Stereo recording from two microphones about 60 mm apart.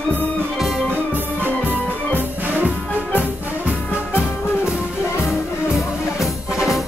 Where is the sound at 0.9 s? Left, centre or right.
Right.